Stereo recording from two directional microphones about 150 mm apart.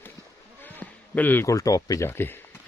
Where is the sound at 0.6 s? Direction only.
10° left (ahead or behind).